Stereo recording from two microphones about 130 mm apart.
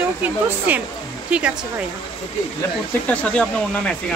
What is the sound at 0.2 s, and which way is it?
Speech, 15° right (ahead or behind).